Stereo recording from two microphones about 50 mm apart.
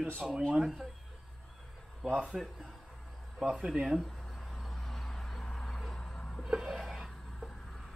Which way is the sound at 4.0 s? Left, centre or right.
Centre.